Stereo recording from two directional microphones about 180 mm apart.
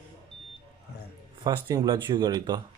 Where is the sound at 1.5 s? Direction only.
20° right (ahead or behind).